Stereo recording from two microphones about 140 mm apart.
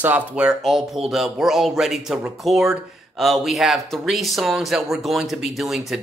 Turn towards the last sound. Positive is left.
turn(degrees=0)  # may be behind; listen again after turning